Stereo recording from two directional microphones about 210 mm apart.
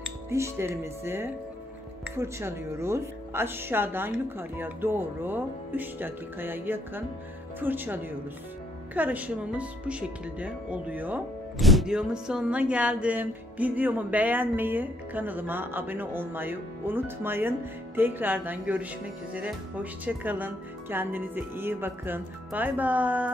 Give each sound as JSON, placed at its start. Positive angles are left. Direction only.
{"t": 0.3, "sound": "speech", "side_deg": -10}